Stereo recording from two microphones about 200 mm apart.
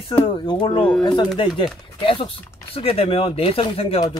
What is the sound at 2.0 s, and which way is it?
Speech, 25° left (ahead or behind).